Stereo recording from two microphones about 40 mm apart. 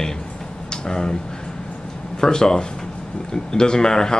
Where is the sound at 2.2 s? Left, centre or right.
Centre.